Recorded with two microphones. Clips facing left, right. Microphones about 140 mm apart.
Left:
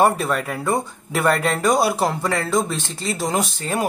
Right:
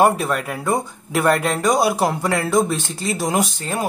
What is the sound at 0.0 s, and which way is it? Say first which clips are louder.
Speech: right 1 dB; 5° right (ahead or behind).